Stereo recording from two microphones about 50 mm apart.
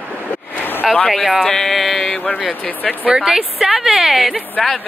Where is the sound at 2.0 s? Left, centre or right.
Centre.